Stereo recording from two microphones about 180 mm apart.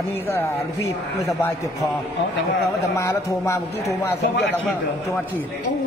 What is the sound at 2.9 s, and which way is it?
Speech, 15° left (ahead or behind).